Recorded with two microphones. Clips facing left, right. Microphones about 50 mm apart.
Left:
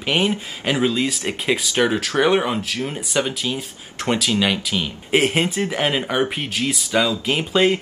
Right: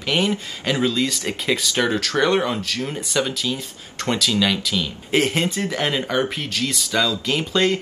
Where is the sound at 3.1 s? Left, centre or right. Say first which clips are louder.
Left 1 dB; left.